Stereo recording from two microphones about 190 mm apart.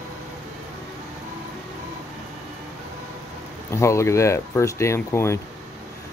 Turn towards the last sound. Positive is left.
turn(degrees=15)  # may be behind; listen again after turning